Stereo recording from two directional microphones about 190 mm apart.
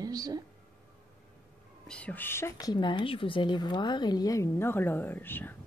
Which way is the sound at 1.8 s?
5° left (ahead or behind).